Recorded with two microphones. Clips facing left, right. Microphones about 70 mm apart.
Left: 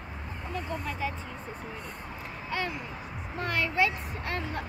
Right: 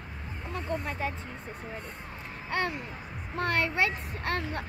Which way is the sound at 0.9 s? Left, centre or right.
Right.